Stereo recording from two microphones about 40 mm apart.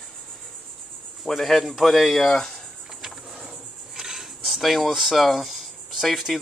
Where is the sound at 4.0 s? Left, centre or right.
Centre.